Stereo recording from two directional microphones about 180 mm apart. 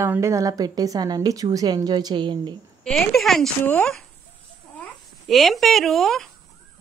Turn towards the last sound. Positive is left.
turn(degrees=0)  # may be behind; listen again after turning